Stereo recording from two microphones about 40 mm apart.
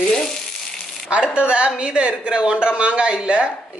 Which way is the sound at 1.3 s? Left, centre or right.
Right.